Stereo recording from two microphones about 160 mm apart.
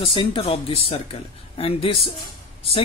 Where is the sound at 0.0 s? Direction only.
30° left (ahead or behind).